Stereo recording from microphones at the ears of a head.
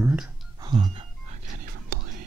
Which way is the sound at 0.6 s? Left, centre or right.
Right.